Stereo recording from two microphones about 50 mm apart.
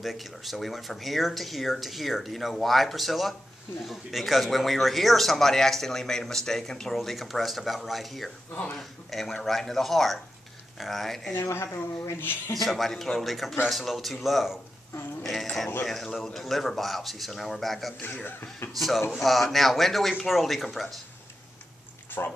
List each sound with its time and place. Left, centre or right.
0.0 s speech: centre
11.4 s speech: left
12.2 s speech: left
12.6 s speech: centre
15.8 s speech: centre
22.2 s speech: left